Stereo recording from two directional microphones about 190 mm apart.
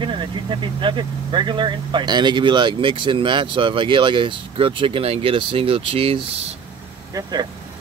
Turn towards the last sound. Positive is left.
turn(degrees=-20)  # may be behind; listen again after turning